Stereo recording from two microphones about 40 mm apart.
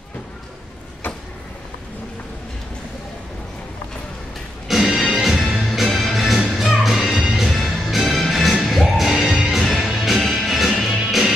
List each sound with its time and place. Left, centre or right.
4.6 s music: centre